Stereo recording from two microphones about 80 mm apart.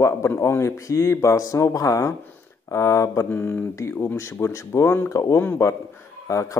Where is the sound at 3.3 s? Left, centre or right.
Left.